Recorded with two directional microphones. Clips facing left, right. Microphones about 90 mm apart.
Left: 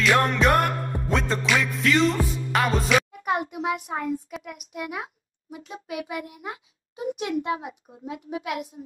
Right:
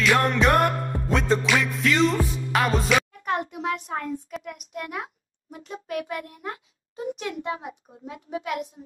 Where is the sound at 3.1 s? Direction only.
10° left (ahead or behind).